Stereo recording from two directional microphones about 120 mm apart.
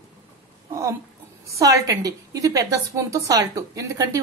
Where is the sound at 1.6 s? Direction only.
25° right (ahead or behind).